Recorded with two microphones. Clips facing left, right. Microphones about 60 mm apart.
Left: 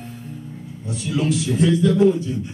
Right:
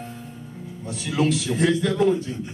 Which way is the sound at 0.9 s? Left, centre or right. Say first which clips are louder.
Even; right.